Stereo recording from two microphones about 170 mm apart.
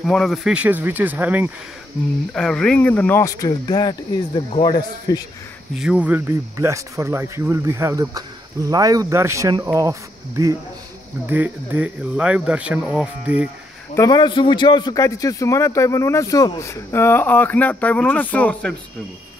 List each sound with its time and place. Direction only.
0.0 s speech: 5° left (ahead or behind)
2.3 s a man's voice: 5° left (ahead or behind); by 5.2 s 25° left (ahead or behind)
5.8 s speech: 5° right (ahead or behind)
9.7 s insect: 20° right (ahead or behind)
11.2 s speech: 10° right (ahead or behind)
13.9 s a man's voice: 20° left (ahead or behind); by 18.8 s 5° left (ahead or behind)